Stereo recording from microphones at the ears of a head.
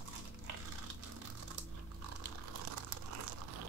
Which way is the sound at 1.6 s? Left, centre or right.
Right.